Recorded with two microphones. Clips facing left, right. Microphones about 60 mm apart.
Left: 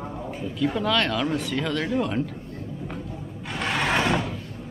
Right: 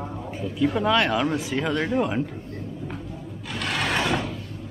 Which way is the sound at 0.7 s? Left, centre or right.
Centre.